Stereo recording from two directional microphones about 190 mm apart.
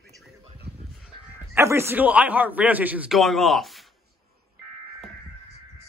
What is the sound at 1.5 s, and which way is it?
A man's voice, 15° right (ahead or behind).